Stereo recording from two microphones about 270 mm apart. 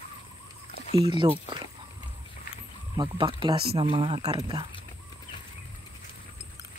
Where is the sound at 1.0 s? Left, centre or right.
Centre.